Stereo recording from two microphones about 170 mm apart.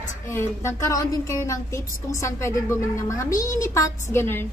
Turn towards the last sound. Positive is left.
turn(degrees=15)  # may be behind; listen again after turning